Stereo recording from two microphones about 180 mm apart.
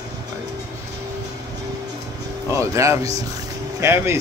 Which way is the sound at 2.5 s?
15° right (ahead or behind).